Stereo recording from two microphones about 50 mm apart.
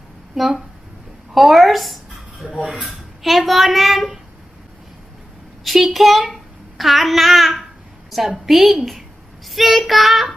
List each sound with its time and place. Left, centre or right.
0.3 s speech: centre
2.4 s speech: right
2.9 s speech: centre
5.6 s speech: centre
6.3 s babbling: centre
8.1 s speech: centre